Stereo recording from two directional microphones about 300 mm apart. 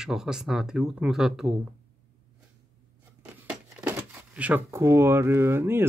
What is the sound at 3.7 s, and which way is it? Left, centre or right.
Speech, centre.